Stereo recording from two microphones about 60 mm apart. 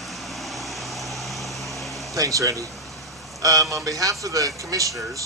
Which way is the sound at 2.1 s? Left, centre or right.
Right.